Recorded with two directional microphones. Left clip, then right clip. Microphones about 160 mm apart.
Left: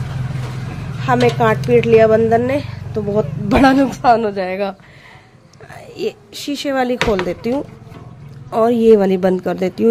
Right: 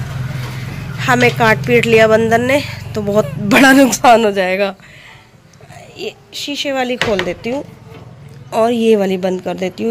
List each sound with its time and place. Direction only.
0.9 s speech: centre (ahead or behind); by 4.2 s 15° right (ahead or behind)
4.2 s speech: centre (ahead or behind)
5.9 s a woman's voice: 50° left (ahead or behind)
6.7 s a woman's voice: 25° left (ahead or behind)